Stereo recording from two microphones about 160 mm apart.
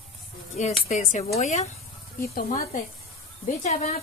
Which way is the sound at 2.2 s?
60° left (ahead or behind).